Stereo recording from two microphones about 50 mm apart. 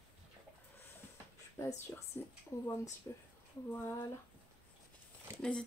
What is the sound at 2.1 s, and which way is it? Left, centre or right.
Speech, left.